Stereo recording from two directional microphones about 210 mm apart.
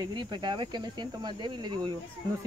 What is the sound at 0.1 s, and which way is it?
Speech, 20° right (ahead or behind).